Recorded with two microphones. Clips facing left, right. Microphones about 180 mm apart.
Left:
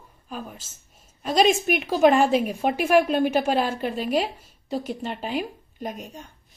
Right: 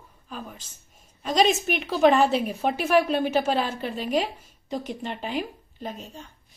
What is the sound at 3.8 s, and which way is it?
Speech, 45° left (ahead or behind).